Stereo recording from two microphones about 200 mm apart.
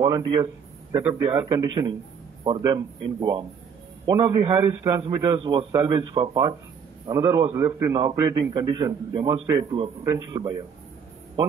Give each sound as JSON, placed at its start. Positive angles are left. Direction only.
{"t": 0.0, "sound": "a man's voice", "side_deg": -20}